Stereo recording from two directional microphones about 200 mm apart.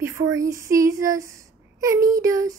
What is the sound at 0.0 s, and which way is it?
Speech, 15° right (ahead or behind).